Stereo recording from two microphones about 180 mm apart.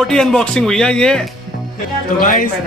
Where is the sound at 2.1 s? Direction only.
50° left (ahead or behind).